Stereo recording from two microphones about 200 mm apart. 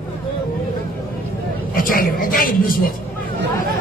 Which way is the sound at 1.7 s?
45° left (ahead or behind).